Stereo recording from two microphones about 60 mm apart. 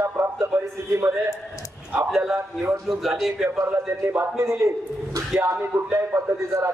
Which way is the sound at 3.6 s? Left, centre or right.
Right.